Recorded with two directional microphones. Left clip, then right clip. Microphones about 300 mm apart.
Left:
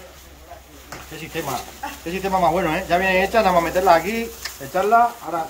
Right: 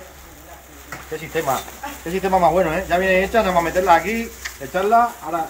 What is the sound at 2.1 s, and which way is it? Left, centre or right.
Speech, centre.